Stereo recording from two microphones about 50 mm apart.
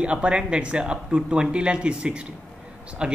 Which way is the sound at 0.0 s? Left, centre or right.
Right.